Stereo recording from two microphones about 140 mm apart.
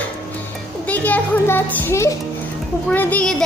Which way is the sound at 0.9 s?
10° left (ahead or behind).